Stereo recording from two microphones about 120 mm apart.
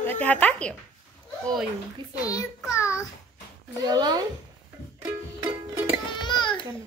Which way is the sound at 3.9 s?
35° right (ahead or behind).